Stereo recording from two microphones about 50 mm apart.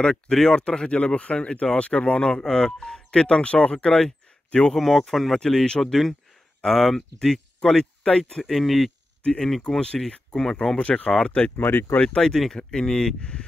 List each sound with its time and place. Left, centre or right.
0.0 s speech: centre
2.4 s speech: centre
4.7 s speech: centre
5.4 s speech: centre
8.5 s speech: centre
9.8 s speech: centre
10.8 s speech: left
11.5 s speech: left
12.2 s speech: centre